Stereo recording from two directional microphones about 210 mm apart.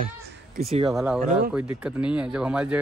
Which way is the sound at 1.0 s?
Centre (ahead or behind).